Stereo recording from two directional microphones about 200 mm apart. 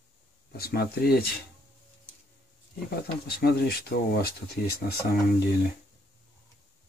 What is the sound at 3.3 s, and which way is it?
Speech, 55° left (ahead or behind).